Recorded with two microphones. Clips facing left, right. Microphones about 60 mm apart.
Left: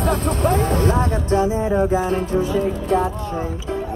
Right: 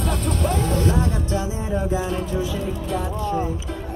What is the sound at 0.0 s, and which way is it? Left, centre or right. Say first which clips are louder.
Music: left 5 dB; left.